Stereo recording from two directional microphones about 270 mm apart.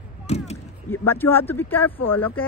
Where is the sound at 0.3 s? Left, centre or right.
Left.